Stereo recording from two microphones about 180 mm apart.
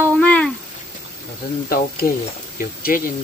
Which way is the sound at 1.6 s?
55° left (ahead or behind).